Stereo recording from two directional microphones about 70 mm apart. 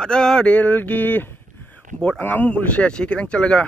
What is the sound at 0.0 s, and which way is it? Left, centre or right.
Speech, centre.